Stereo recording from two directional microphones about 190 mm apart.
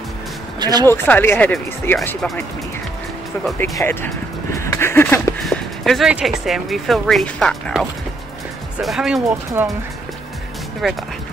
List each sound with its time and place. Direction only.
0.6 s speech: 20° right (ahead or behind)
0.8 s speech: 10° left (ahead or behind)
3.5 s speech: 10° left (ahead or behind)
5.4 s speech: centre (ahead or behind)
10.8 s speech: centre (ahead or behind)